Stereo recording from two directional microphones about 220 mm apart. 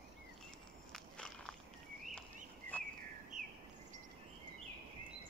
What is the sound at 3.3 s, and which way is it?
Bird vocalization, 35° right (ahead or behind).